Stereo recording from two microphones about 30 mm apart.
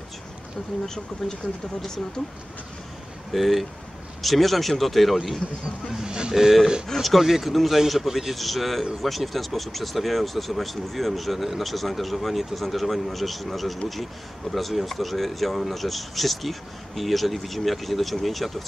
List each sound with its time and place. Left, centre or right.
3.3 s speech: centre
6.0 s speech: right
6.3 s speech: centre
7.0 s speech: centre